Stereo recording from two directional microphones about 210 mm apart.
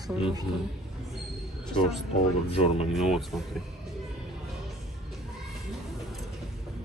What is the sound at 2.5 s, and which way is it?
Speech, 30° left (ahead or behind).